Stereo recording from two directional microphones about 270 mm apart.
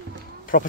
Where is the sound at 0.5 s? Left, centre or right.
Left.